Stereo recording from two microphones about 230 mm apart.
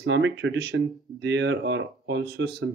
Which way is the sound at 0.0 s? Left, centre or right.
Right.